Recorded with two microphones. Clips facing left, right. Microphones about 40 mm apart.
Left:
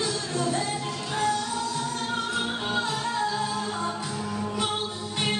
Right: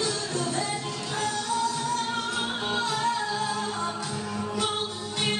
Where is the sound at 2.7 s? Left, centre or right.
Centre.